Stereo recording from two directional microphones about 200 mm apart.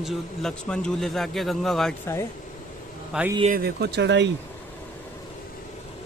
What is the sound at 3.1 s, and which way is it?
Speech, 5° right (ahead or behind).